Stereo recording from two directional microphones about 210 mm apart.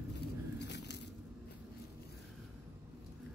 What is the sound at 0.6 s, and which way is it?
Biting, 55° left (ahead or behind).